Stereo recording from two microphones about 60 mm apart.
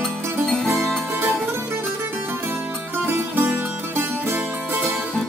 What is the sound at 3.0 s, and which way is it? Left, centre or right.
Music, right.